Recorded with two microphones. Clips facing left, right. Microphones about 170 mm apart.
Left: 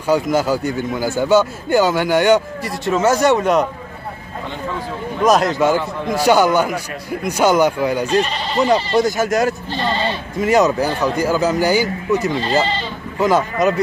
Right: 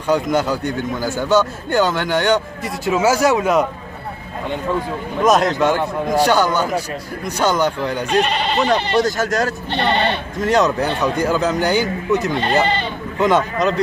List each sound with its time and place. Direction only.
0.0 s a man's voice: 5° left (ahead or behind)
2.8 s a man's voice: 5° right (ahead or behind)
5.2 s a man's voice: centre (ahead or behind)
8.1 s speech: 65° right (ahead or behind)
9.0 s a man's voice: 10° left (ahead or behind)
9.7 s speech: 70° right (ahead or behind)
10.4 s a man's voice: 5° left (ahead or behind)
12.4 s speech: 60° right (ahead or behind)
13.2 s a man's voice: 5° left (ahead or behind)